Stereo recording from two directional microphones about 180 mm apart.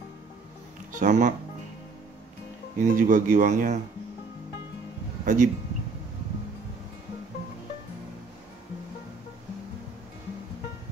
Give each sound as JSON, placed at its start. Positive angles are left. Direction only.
{"t": 0.9, "sound": "speech", "side_deg": -45}
{"t": 2.8, "sound": "speech", "side_deg": -45}
{"t": 5.2, "sound": "a man's voice", "side_deg": -45}